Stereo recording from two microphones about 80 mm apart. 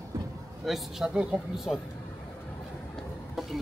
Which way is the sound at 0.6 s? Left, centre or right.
Centre.